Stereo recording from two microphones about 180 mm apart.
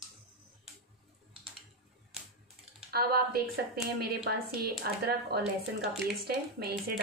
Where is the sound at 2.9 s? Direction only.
60° right (ahead or behind).